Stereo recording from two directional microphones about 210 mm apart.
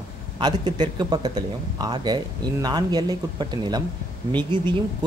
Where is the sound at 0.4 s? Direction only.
20° right (ahead or behind).